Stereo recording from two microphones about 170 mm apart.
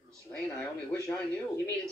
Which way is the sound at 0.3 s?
10° left (ahead or behind).